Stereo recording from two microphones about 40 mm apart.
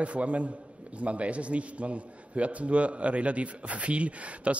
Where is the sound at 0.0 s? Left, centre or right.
Right.